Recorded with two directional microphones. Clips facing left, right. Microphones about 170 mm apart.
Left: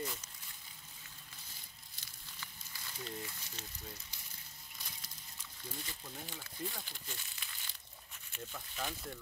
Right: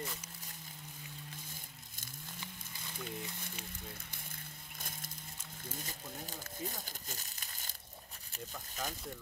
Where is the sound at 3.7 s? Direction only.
55° right (ahead or behind).